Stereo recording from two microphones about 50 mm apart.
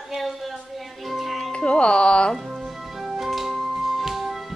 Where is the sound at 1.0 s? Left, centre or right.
Centre.